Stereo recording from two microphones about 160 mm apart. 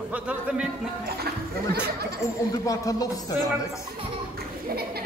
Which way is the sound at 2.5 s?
20° left (ahead or behind).